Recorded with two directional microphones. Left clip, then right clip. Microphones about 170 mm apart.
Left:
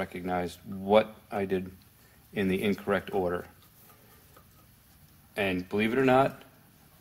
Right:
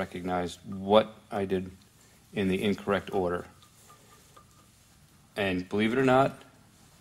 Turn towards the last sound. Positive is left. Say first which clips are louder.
# even
turn(degrees=-10)  # may be behind; listen again after turning